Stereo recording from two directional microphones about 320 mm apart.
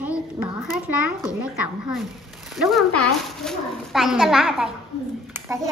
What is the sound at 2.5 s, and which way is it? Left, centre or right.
Speech, centre.